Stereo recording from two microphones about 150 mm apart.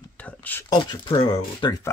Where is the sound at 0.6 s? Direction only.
30° left (ahead or behind).